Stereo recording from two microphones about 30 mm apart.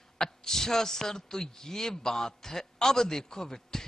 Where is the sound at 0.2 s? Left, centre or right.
Centre.